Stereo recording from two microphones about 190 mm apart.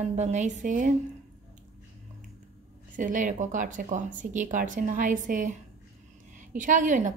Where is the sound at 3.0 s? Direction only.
45° right (ahead or behind).